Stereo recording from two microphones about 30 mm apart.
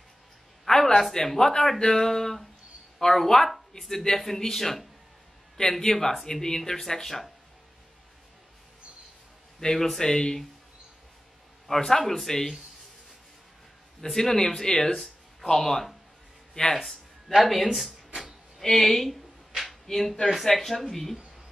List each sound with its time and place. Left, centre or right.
0.7 s a sound: centre
1.1 s speech: centre
9.6 s a man's voice: left
11.6 s a man's voice: centre
14.0 s speech: centre
16.6 s speech: left
17.4 s speech: centre
19.7 s a sound: centre
20.4 s speech: centre